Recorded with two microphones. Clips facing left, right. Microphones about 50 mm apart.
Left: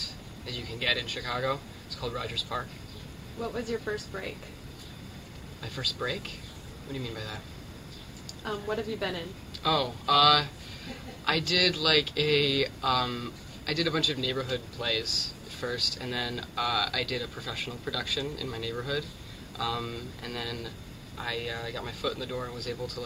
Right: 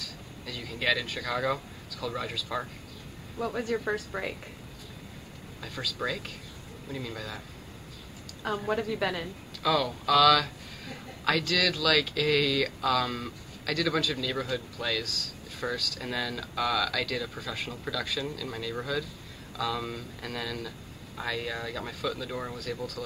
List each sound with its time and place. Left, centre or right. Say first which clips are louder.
0.0 s speech: even; centre
3.3 s a woman's voice: right 2 dB; right
5.6 s speech: even; centre
8.4 s a woman's voice: right 3 dB; centre
9.6 s speech: right 1 dB; centre